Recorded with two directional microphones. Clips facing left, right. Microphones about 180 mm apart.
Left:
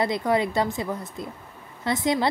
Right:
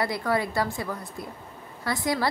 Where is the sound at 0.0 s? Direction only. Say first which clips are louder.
Left 3 dB; 20° left (ahead or behind).